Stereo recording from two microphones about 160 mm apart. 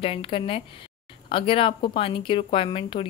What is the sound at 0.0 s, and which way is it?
A woman's voice, 35° left (ahead or behind).